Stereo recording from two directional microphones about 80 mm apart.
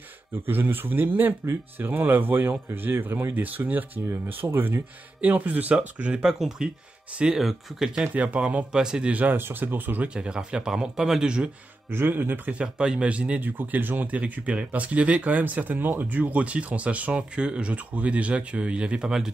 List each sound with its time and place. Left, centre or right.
0.5 s speech: right
7.2 s speech: centre
8.1 s speech: centre
11.9 s speech: right
12.5 s speech: centre